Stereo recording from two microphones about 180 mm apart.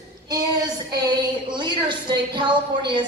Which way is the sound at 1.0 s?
25° right (ahead or behind).